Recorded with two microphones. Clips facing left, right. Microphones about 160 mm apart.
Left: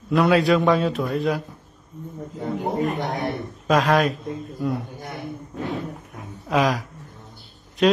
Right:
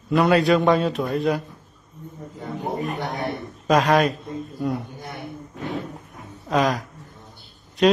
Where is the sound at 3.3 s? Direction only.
Centre (ahead or behind).